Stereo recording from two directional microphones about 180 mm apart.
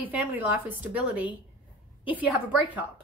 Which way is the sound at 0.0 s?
10° right (ahead or behind).